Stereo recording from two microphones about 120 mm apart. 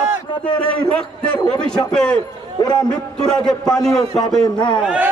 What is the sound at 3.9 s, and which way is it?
Speech, 35° left (ahead or behind).